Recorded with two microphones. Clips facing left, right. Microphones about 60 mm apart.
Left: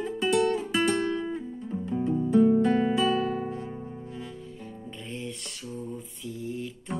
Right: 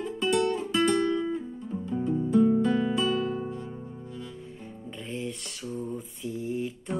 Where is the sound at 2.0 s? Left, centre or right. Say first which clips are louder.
Left 1 dB; centre.